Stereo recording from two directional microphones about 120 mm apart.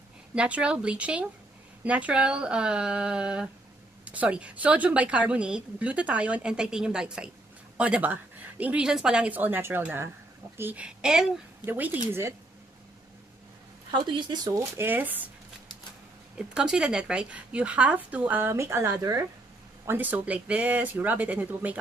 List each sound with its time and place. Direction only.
0.3 s a woman's voice: 10° right (ahead or behind)
13.9 s speech: 40° right (ahead or behind)
14.8 s a woman's voice: 15° right (ahead or behind)
16.3 s a woman's voice: 5° right (ahead or behind); by 19.2 s 25° right (ahead or behind)
19.9 s a woman's voice: 15° right (ahead or behind)